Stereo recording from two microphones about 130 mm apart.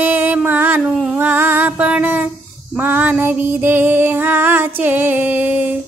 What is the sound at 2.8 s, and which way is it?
A woman's voice, 15° right (ahead or behind).